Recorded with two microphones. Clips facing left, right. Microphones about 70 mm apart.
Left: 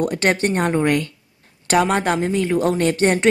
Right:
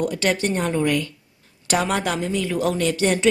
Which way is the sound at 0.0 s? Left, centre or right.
Left.